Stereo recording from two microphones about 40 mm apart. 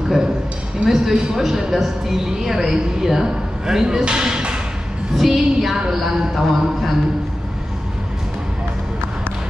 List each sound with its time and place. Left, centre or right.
0.8 s speech: centre
5.1 s music: centre
5.9 s speech: centre